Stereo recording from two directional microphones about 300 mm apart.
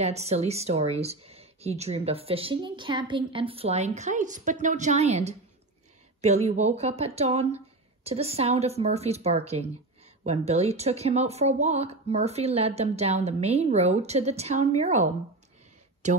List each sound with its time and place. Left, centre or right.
0.0 s speech: right